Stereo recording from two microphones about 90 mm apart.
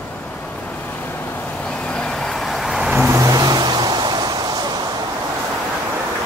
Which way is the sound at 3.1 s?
40° right (ahead or behind).